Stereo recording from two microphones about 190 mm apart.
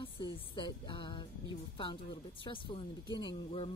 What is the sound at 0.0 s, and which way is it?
Speech, 25° left (ahead or behind).